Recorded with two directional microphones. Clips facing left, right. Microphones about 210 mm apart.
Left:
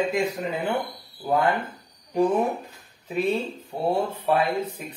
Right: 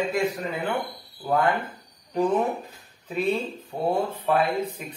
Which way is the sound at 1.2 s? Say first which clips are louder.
Left 1 dB; 10° left (ahead or behind).